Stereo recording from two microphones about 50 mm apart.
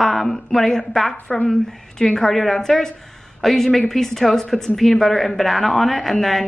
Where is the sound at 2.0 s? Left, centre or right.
Centre.